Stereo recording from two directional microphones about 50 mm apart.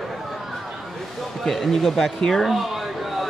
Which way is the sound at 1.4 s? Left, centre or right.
Centre.